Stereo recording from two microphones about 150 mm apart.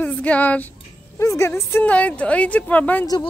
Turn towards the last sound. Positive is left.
turn(degrees=10)  # may be behind; listen again after turning